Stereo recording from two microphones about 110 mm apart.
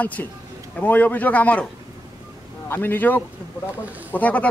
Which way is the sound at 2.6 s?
20° left (ahead or behind).